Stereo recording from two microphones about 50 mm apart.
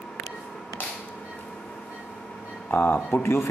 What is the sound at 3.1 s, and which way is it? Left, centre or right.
Speech, left.